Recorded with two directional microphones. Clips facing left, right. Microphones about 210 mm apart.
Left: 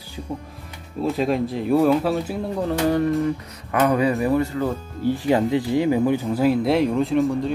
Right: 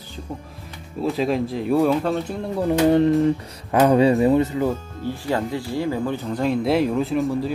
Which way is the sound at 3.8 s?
30° right (ahead or behind).